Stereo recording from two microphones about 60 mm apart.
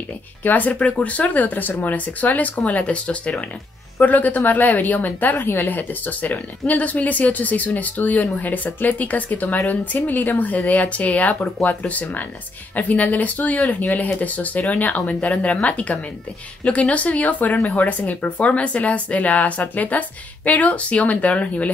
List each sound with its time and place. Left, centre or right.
0.4 s speech: left